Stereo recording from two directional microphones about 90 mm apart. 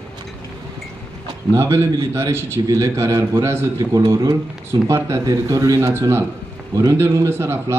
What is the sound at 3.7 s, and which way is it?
Speech, 45° right (ahead or behind).